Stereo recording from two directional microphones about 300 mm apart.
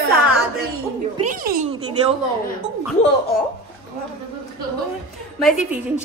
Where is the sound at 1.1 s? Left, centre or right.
Right.